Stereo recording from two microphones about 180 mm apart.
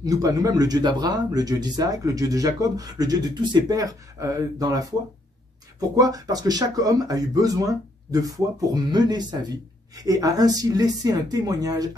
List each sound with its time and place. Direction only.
0.0 s speech: 20° right (ahead or behind)
5.9 s speech: 20° right (ahead or behind)